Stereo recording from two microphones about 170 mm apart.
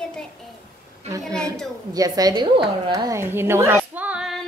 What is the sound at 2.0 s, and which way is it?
A woman's voice, 20° right (ahead or behind).